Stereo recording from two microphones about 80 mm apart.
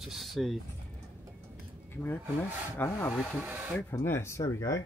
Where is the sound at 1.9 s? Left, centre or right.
Left.